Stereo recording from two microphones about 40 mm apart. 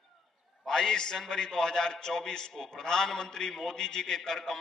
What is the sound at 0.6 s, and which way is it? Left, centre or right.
A man's voice, centre.